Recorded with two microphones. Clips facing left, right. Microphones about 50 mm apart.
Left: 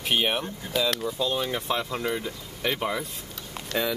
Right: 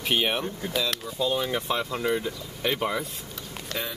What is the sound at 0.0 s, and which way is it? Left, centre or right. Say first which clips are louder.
Speech: even; centre.